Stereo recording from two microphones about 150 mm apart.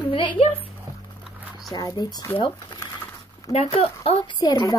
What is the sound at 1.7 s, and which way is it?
Speech, 25° left (ahead or behind).